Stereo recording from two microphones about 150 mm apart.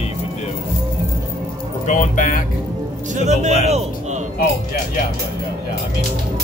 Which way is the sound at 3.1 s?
50° right (ahead or behind).